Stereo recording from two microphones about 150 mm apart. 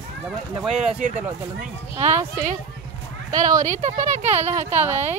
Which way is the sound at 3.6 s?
55° right (ahead or behind).